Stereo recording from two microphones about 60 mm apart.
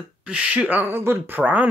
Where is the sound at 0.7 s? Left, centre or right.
Right.